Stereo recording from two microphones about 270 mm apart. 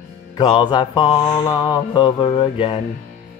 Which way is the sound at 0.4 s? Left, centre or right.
Centre.